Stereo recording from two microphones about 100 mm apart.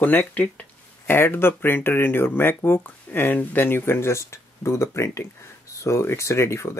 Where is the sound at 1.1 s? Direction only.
25° left (ahead or behind).